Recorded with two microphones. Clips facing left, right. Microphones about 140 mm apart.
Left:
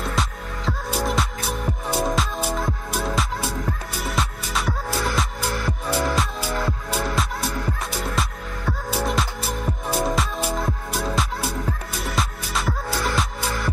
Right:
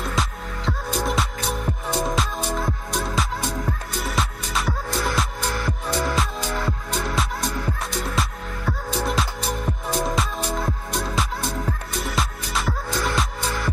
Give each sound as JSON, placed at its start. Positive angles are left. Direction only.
{"t": 0.0, "sound": "music", "side_deg": 0}